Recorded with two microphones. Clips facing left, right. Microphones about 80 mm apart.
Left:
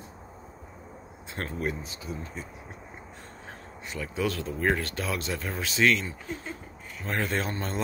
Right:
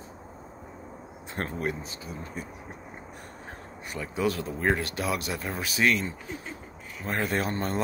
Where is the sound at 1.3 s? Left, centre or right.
Right.